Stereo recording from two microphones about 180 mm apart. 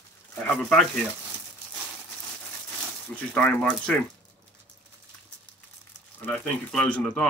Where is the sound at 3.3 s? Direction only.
5° left (ahead or behind).